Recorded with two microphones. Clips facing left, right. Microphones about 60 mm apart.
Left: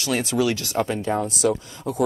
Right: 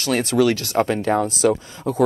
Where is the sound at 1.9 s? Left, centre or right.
Right.